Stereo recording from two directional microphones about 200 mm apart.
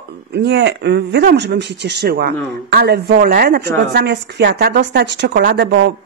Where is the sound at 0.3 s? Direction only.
55° right (ahead or behind).